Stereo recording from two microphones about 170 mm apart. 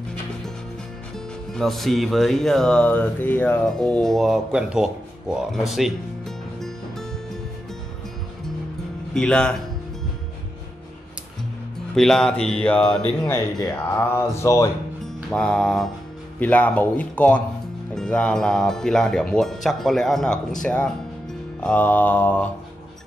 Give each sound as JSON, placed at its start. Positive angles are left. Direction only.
{"t": 1.5, "sound": "music", "side_deg": 0}
{"t": 9.1, "sound": "music", "side_deg": 5}
{"t": 11.9, "sound": "music", "side_deg": 5}
{"t": 13.6, "sound": "speech", "side_deg": 15}
{"t": 15.3, "sound": "music", "side_deg": 5}
{"t": 16.3, "sound": "speech", "side_deg": 10}
{"t": 17.9, "sound": "music", "side_deg": 5}
{"t": 20.6, "sound": "speech", "side_deg": 5}